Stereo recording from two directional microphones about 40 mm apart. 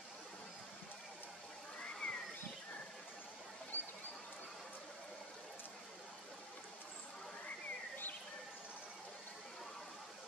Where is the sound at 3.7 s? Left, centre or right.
Left.